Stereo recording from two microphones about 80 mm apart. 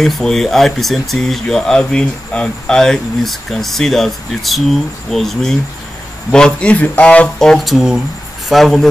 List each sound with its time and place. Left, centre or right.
0.0 s speech: centre
7.3 s speech: centre